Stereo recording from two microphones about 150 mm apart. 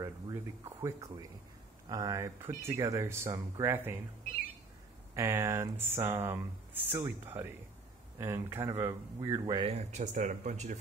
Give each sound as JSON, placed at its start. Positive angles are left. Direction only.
{"t": 0.0, "sound": "speech", "side_deg": -20}
{"t": 5.1, "sound": "speech", "side_deg": -20}
{"t": 9.7, "sound": "speech", "side_deg": -45}